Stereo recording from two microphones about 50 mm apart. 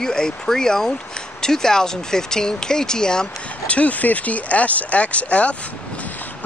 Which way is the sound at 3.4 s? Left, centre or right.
Left.